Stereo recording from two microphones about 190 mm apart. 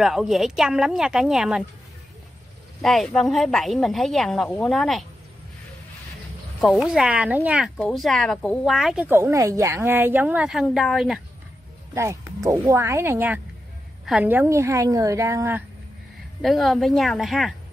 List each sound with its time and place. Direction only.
0.0 s speech: centre (ahead or behind)
2.8 s speech: centre (ahead or behind)
6.6 s speech: centre (ahead or behind)
11.9 s speech: 15° right (ahead or behind)
16.3 s speech: centre (ahead or behind)